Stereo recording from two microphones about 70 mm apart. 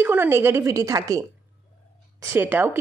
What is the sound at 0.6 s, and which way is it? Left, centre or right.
Speech, right.